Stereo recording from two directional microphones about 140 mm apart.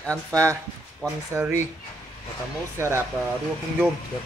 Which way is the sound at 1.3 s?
20° right (ahead or behind).